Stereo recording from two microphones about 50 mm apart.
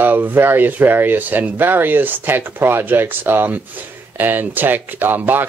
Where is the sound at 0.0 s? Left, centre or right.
Right.